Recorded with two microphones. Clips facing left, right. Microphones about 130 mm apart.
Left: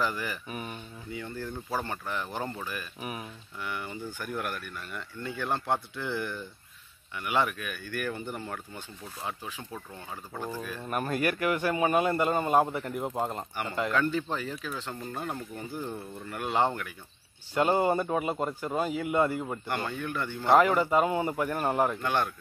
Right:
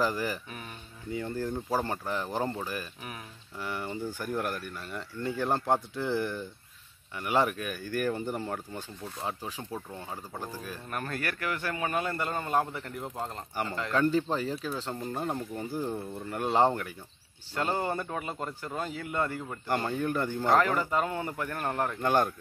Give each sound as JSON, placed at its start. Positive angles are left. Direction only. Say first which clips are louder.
{"t": 0.0, "sound": "speech", "louder": "right 2 dB", "side_deg": -35}
{"t": 0.5, "sound": "speech", "louder": "left 5 dB", "side_deg": 15}
{"t": 1.1, "sound": "speech", "louder": "right 5 dB", "side_deg": -35}
{"t": 3.0, "sound": "speech", "louder": "left 5 dB", "side_deg": 15}
{"t": 3.5, "sound": "speech", "louder": "right 2 dB", "side_deg": -35}
{"t": 10.9, "sound": "speech", "louder": "left 6 dB", "side_deg": 15}
{"t": 13.9, "sound": "speech", "louder": "right 5 dB", "side_deg": -35}
{"t": 17.6, "sound": "speech", "louder": "left 6 dB", "side_deg": 15}
{"t": 19.7, "sound": "speech", "louder": "right 6 dB", "side_deg": -35}
{"t": 20.5, "sound": "speech", "louder": "left 5 dB", "side_deg": 15}
{"t": 22.0, "sound": "speech", "louder": "right 3 dB", "side_deg": -40}